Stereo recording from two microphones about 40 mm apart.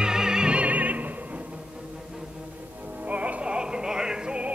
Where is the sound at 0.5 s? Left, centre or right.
Right.